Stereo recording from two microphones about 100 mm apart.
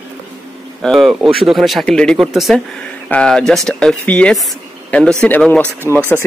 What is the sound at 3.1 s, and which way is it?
Speech, 10° left (ahead or behind).